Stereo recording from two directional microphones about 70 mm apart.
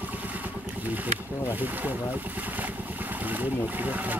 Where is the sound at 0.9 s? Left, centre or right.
Right.